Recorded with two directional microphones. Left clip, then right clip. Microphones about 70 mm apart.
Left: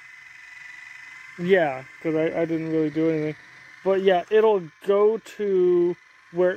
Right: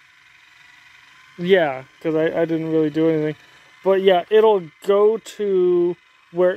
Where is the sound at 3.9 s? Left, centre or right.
Right.